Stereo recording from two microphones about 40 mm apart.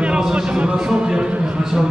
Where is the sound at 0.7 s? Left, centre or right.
Centre.